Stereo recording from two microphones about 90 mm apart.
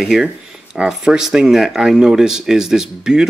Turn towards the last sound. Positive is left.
turn(degrees=-10)  # may be behind; listen again after turning